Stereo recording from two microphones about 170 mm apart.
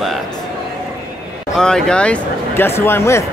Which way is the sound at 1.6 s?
5° left (ahead or behind).